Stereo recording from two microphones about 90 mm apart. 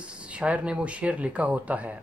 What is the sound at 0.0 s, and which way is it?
Speech, 15° right (ahead or behind).